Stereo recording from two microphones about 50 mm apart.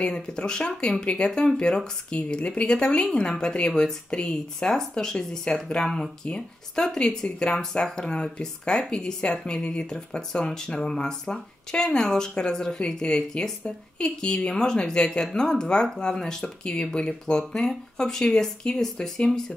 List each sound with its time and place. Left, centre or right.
0.0 s speech: centre